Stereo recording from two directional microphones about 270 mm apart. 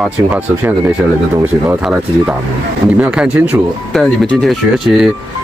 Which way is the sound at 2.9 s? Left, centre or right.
Centre.